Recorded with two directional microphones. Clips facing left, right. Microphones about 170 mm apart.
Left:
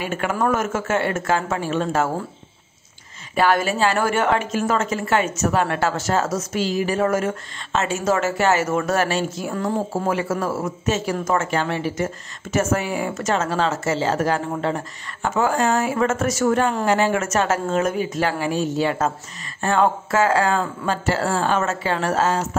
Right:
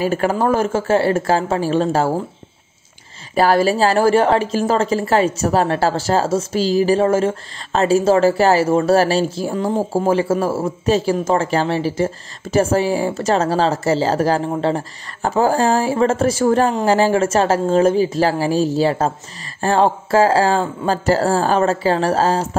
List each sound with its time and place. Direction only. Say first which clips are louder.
0.0 s speech: right 5 dB; 35° right (ahead or behind)
3.3 s speech: right 5 dB; 35° right (ahead or behind)